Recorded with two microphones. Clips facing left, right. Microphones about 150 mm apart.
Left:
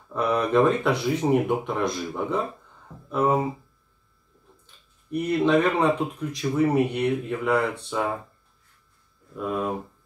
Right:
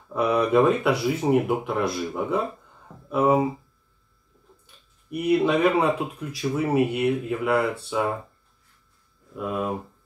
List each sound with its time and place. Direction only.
0.1 s speech: 10° right (ahead or behind)
5.1 s speech: 10° right (ahead or behind)
9.3 s speech: 5° right (ahead or behind)